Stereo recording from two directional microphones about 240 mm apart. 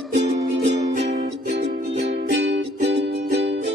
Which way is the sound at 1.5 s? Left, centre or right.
Right.